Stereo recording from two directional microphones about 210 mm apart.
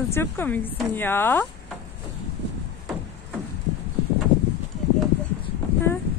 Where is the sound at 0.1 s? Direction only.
10° left (ahead or behind).